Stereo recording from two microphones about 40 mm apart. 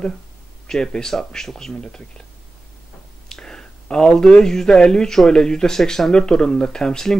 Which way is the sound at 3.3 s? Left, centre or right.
Centre.